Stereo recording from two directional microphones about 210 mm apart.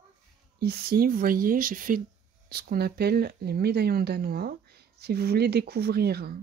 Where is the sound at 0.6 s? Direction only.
50° right (ahead or behind).